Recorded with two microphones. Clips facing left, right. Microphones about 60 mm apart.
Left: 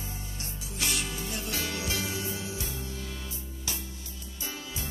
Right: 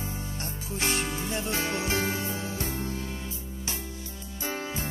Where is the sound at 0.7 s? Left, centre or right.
Right.